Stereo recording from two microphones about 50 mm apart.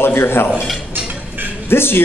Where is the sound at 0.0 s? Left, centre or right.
Left.